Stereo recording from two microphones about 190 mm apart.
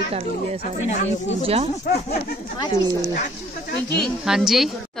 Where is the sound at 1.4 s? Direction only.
30° right (ahead or behind).